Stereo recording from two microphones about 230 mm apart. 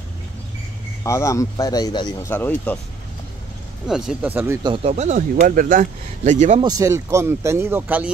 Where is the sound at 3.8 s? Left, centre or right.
Centre.